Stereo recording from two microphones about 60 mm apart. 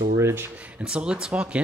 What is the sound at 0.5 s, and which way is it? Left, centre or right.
Speech, centre.